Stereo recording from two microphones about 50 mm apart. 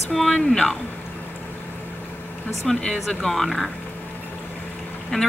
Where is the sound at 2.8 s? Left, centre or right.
Centre.